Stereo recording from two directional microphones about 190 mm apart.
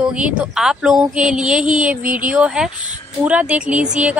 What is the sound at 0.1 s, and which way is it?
Speech, 5° right (ahead or behind).